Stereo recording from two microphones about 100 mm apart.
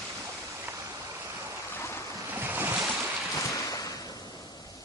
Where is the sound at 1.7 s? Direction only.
25° left (ahead or behind).